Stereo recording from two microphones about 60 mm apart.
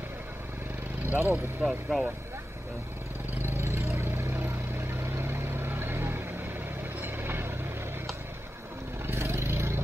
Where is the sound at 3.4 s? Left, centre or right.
Right.